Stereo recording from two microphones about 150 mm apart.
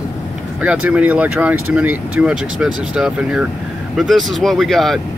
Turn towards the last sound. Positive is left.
turn(degrees=0)  # may be behind; listen again after turning